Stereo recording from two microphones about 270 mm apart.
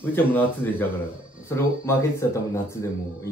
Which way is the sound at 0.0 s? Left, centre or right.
Centre.